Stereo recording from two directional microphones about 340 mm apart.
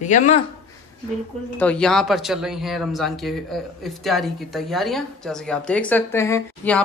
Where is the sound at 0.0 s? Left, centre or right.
Left.